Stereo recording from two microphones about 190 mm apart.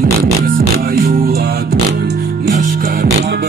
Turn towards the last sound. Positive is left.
turn(degrees=-55)  # may be behind; listen again after turning